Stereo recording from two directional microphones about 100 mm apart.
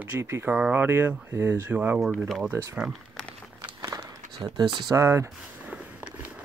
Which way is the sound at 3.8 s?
40° right (ahead or behind).